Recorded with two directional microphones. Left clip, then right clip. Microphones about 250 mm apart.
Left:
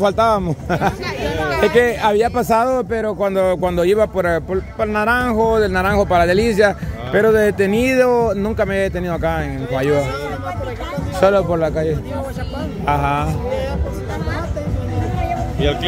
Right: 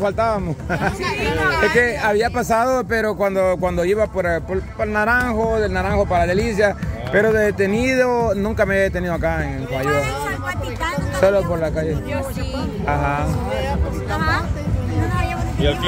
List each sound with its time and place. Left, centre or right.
0.0 s a man's voice: left
11.1 s speech: left